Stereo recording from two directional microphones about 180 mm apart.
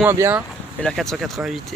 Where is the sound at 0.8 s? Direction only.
Centre (ahead or behind).